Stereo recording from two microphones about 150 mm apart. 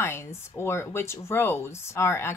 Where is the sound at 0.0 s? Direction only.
15° left (ahead or behind).